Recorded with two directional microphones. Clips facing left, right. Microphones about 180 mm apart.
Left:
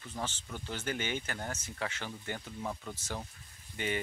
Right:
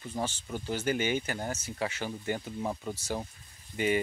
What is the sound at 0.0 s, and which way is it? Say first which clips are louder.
Speech: right 5 dB; 10° right (ahead or behind).